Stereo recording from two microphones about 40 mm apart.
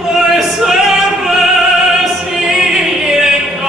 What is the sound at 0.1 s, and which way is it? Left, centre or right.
Music, centre.